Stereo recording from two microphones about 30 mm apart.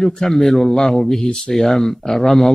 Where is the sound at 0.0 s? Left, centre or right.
Centre.